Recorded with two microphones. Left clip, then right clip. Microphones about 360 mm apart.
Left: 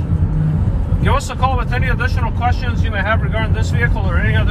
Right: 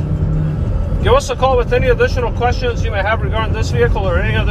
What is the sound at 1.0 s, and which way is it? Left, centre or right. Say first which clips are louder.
Speech: right 5 dB; right.